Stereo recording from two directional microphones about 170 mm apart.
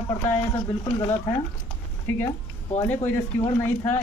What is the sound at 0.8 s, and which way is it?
Speech, 15° left (ahead or behind).